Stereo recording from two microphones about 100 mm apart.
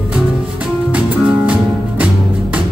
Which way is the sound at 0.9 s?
15° right (ahead or behind).